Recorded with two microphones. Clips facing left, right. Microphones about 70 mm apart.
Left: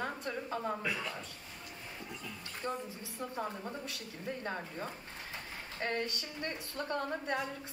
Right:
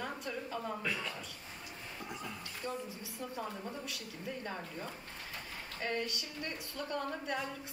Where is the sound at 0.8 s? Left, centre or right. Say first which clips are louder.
Left 1 dB; centre.